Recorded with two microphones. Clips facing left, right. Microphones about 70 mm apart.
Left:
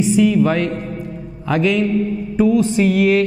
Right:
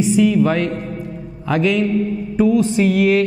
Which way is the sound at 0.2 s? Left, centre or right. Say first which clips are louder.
Even; centre.